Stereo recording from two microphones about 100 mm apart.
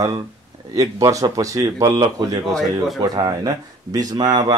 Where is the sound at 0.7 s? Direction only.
35° right (ahead or behind).